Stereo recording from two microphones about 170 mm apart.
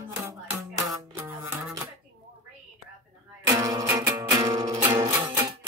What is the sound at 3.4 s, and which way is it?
Music, 20° right (ahead or behind).